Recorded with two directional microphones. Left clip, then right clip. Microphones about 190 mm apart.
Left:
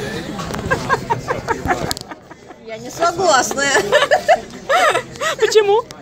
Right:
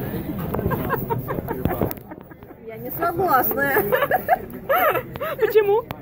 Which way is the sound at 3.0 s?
10° left (ahead or behind).